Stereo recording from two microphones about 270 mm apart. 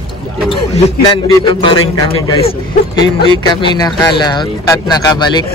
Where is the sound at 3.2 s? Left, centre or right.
Centre.